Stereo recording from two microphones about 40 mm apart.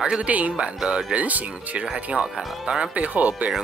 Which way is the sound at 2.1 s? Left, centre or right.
Centre.